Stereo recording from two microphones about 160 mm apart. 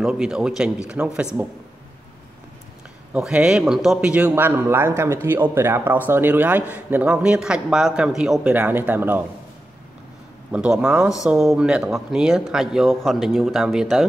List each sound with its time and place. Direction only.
0.0 s speech: 5° right (ahead or behind)
3.1 s a man's voice: 5° right (ahead or behind)
10.5 s speech: 5° right (ahead or behind)